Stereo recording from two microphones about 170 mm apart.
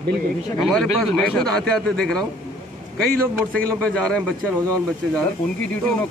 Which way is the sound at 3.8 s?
5° left (ahead or behind).